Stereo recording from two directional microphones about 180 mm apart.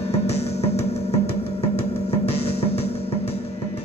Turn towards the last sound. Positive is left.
turn(degrees=35)  # may be behind; listen again after turning